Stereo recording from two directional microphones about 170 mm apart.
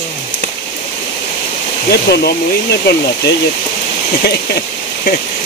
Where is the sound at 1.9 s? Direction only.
70° left (ahead or behind).